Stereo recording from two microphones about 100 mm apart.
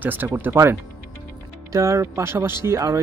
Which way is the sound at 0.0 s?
20° right (ahead or behind).